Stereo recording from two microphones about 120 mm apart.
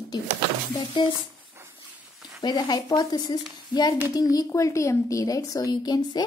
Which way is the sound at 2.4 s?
35° left (ahead or behind).